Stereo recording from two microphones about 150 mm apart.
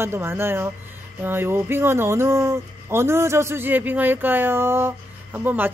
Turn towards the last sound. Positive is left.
turn(degrees=-10)  # may be behind; listen again after turning